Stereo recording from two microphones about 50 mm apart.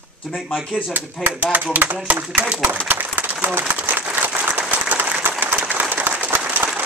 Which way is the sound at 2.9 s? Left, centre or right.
Right.